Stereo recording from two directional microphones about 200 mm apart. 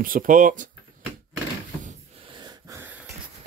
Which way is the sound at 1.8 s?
25° right (ahead or behind).